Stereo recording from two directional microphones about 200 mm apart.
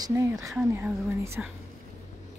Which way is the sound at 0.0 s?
15° right (ahead or behind).